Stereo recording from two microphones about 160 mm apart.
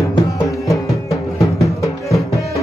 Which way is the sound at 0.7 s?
20° left (ahead or behind).